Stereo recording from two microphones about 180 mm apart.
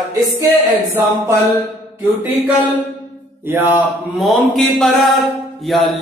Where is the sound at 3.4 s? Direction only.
10° right (ahead or behind).